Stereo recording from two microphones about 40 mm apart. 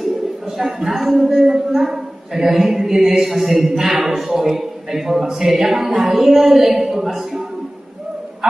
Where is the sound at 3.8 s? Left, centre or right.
Centre.